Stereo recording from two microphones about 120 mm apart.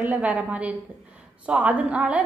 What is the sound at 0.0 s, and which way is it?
A woman's voice, 15° right (ahead or behind).